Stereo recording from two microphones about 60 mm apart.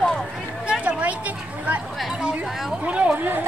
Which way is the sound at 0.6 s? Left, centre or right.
Right.